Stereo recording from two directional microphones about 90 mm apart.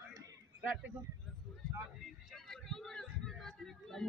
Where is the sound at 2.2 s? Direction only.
Centre (ahead or behind).